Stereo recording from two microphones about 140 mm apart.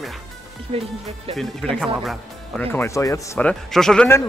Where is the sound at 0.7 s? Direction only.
45° right (ahead or behind).